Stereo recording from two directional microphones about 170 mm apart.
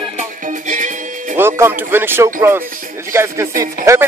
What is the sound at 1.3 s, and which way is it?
Speech, 15° right (ahead or behind).